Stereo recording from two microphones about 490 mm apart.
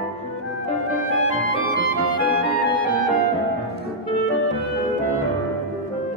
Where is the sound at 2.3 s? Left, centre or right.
Centre.